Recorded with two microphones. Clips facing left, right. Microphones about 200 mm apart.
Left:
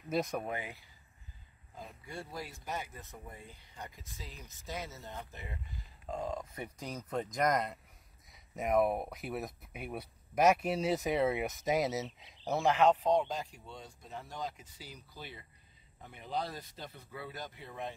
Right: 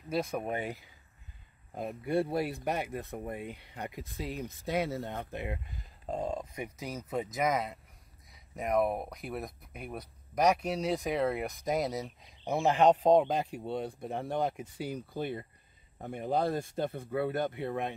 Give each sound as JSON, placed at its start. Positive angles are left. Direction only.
{"t": 0.1, "sound": "speech", "side_deg": 0}
{"t": 1.8, "sound": "speech", "side_deg": -60}
{"t": 6.0, "sound": "speech", "side_deg": -30}
{"t": 6.5, "sound": "speech", "side_deg": -10}
{"t": 12.6, "sound": "speech", "side_deg": -35}